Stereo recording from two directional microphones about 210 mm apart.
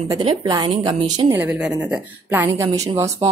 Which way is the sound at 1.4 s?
5° right (ahead or behind).